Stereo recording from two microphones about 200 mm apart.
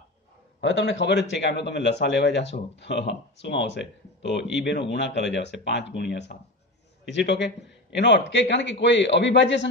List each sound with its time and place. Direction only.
0.6 s a man's voice: 60° left (ahead or behind)